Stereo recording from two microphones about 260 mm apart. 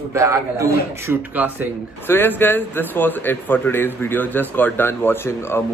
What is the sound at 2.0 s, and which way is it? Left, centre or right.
A man's voice, centre.